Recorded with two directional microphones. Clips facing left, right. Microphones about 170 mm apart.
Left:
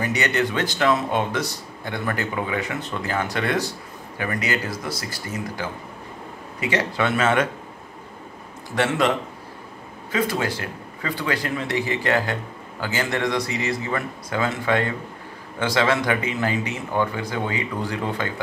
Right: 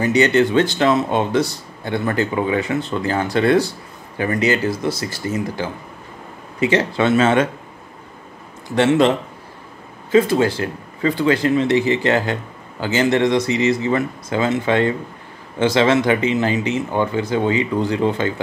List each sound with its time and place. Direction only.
0.0 s speech: 25° right (ahead or behind)
8.7 s speech: 25° right (ahead or behind)
10.1 s speech: 25° right (ahead or behind)